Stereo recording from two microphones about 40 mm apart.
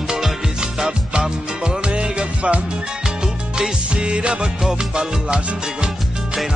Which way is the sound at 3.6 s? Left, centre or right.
Right.